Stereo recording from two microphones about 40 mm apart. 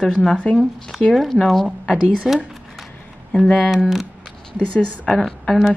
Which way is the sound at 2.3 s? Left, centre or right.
Centre.